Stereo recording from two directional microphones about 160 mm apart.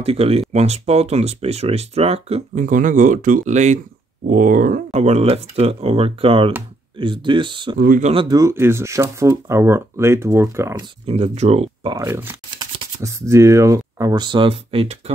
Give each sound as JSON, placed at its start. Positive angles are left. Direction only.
{"t": 0.0, "sound": "speech", "side_deg": -40}
{"t": 2.6, "sound": "speech", "side_deg": -55}
{"t": 4.9, "sound": "speech", "side_deg": -40}
{"t": 7.8, "sound": "speech", "side_deg": -60}
{"t": 8.1, "sound": "speech", "side_deg": -30}
{"t": 8.4, "sound": "speech", "side_deg": -15}
{"t": 11.1, "sound": "speech", "side_deg": -40}
{"t": 11.9, "sound": "speech", "side_deg": -15}